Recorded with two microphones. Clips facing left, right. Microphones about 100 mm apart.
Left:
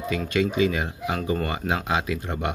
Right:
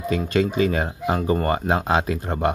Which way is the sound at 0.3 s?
40° right (ahead or behind).